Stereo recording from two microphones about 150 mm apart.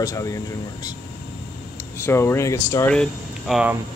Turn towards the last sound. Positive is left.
turn(degrees=5)  # may be behind; listen again after turning